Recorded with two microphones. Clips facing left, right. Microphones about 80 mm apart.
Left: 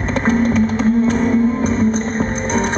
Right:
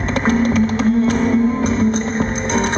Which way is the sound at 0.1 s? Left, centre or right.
Centre.